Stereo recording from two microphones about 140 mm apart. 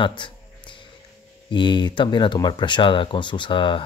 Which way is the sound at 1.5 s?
35° left (ahead or behind).